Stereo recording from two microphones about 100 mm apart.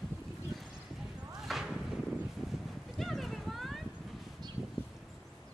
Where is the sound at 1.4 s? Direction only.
5° right (ahead or behind).